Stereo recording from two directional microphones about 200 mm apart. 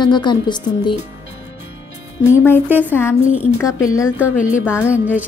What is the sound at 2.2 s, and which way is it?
Speech, 10° left (ahead or behind).